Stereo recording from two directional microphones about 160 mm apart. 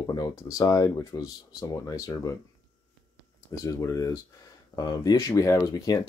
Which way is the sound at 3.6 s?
20° left (ahead or behind).